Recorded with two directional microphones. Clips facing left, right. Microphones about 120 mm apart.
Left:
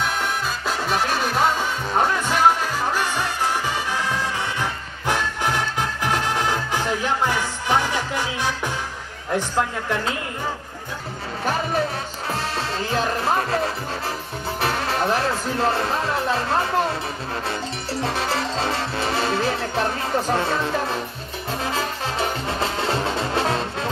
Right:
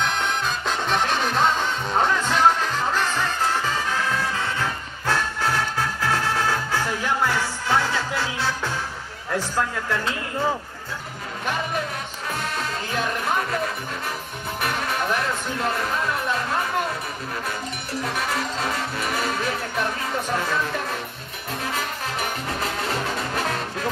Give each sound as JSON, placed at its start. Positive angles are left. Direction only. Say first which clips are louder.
{"t": 0.0, "sound": "music", "louder": "even", "side_deg": 5}
{"t": 11.4, "sound": "music", "louder": "left 4 dB", "side_deg": 35}
{"t": 14.6, "sound": "music", "louder": "left 3 dB", "side_deg": 30}
{"t": 18.0, "sound": "music", "louder": "left 2 dB", "side_deg": 30}